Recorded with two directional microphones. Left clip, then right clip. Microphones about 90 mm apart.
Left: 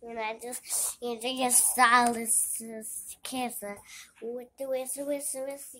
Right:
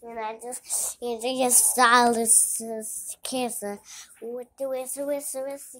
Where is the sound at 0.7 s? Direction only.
25° right (ahead or behind).